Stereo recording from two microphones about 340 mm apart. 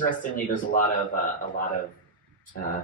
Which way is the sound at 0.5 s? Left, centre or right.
Left.